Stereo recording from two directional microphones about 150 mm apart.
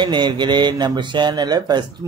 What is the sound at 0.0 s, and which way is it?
Speech, 30° right (ahead or behind).